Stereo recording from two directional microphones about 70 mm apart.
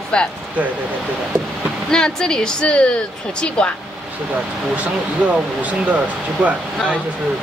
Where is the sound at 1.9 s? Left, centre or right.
Centre.